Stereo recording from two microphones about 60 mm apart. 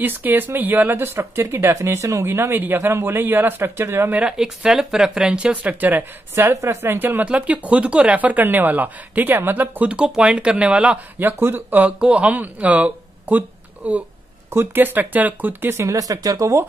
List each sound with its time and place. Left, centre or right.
0.0 s speech: right
2.2 s speech: right
4.1 s speech: right
4.4 s speech: centre
5.2 s speech: centre
6.3 s speech: right
7.2 s speech: right
9.8 s speech: centre
11.1 s speech: right
12.0 s speech: right
14.5 s speech: right
15.7 s speech: right
16.0 s speech: right